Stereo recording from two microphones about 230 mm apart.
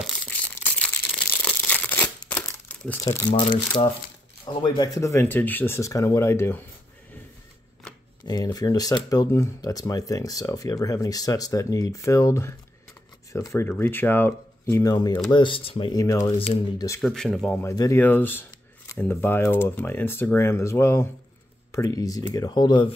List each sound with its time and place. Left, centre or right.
0.0 s crumpling: centre
3.3 s speech: left
8.3 s speech: centre
17.0 s speech: centre